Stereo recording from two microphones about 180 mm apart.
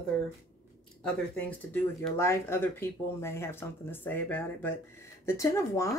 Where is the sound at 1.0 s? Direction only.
10° left (ahead or behind).